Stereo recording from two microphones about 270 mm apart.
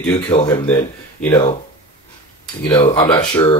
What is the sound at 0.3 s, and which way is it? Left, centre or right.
Speech, centre.